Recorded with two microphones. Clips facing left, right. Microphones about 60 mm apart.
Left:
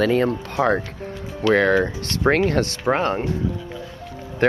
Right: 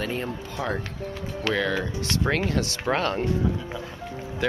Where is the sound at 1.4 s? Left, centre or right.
Left.